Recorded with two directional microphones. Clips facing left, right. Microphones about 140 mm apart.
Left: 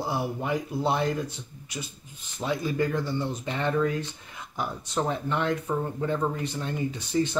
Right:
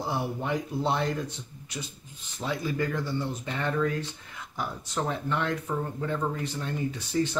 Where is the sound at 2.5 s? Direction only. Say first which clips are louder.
Left 3 dB; 20° left (ahead or behind).